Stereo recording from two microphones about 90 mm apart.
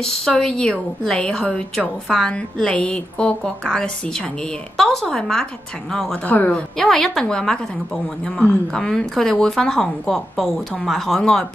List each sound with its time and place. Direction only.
0.0 s a woman's voice: 5° left (ahead or behind)
6.2 s a woman's voice: 15° left (ahead or behind)
6.8 s a woman's voice: 5° left (ahead or behind)